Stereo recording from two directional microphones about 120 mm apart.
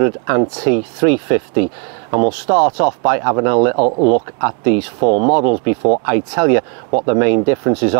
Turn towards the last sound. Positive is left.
turn(degrees=-25)  # may be behind; listen again after turning